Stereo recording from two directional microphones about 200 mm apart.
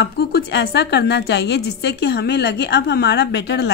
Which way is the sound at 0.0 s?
55° left (ahead or behind).